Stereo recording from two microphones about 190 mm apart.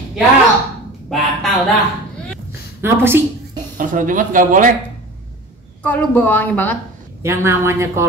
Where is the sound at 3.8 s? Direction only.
45° right (ahead or behind).